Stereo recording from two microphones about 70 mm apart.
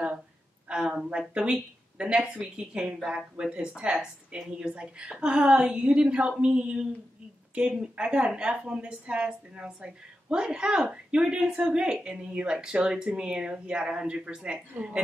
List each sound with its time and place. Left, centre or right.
0.7 s a woman's voice: centre